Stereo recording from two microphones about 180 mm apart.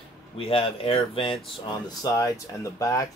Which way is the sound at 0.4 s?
30° left (ahead or behind).